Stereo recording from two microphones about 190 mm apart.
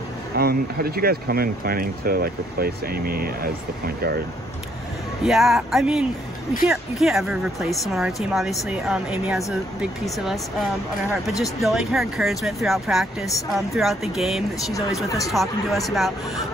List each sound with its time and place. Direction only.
0.4 s speech: 55° right (ahead or behind)
5.2 s speech: centre (ahead or behind)
15.0 s speech: 15° left (ahead or behind)
15.3 s speech: centre (ahead or behind)